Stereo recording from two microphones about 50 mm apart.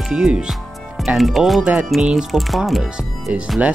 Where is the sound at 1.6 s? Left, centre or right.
Right.